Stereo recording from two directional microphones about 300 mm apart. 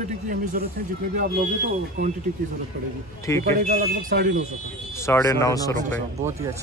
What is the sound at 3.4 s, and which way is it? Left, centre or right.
Speech, right.